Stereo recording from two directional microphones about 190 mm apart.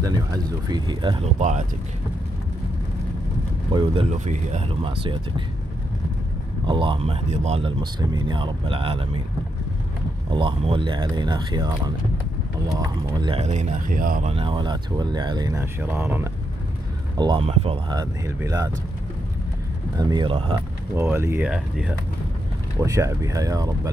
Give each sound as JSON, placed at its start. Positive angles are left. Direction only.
{"t": 0.0, "sound": "speech", "side_deg": -20}
{"t": 1.4, "sound": "speech", "side_deg": -40}
{"t": 3.7, "sound": "speech", "side_deg": -30}
{"t": 6.6, "sound": "speech", "side_deg": -25}
{"t": 10.3, "sound": "speech", "side_deg": -25}
{"t": 13.4, "sound": "speech", "side_deg": -40}
{"t": 14.3, "sound": "speech", "side_deg": -25}
{"t": 17.2, "sound": "speech", "side_deg": -25}
{"t": 17.9, "sound": "speech", "side_deg": -15}
{"t": 20.0, "sound": "speech", "side_deg": -25}
{"t": 20.9, "sound": "speech", "side_deg": -15}
{"t": 22.8, "sound": "speech", "side_deg": -15}